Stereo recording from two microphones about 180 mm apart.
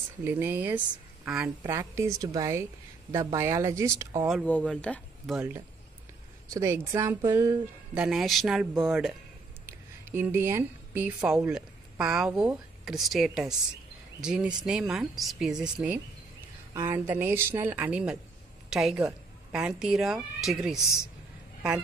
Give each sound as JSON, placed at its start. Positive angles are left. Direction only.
{"t": 0.2, "sound": "a woman's voice", "side_deg": -10}
{"t": 1.6, "sound": "a woman's voice", "side_deg": -15}
{"t": 4.5, "sound": "speech", "side_deg": 10}
{"t": 6.5, "sound": "a woman's voice", "side_deg": -15}
{"t": 7.9, "sound": "speech", "side_deg": -5}
{"t": 9.7, "sound": "a woman's voice", "side_deg": -10}